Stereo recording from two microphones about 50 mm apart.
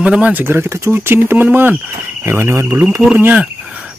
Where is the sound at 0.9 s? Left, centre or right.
Right.